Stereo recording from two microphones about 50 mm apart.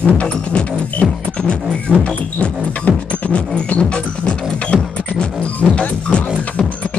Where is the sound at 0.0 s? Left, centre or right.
Left.